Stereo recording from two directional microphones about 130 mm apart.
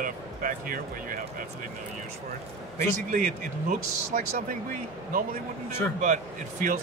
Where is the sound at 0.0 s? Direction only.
90° right.